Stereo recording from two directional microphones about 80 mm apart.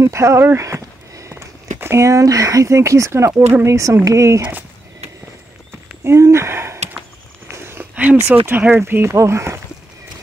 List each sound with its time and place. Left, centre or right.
0.0 s speech: right
6.0 s speech: right
7.4 s a sound: right
7.9 s speech: centre; by 9.6 s right